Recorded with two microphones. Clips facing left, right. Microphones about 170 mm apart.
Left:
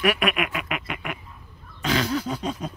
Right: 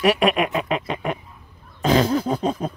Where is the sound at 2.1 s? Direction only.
45° right (ahead or behind).